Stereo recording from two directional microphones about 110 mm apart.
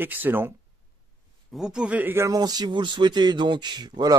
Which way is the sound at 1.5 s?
5° right (ahead or behind).